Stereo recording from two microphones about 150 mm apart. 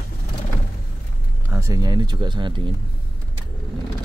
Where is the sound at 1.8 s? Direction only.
30° right (ahead or behind).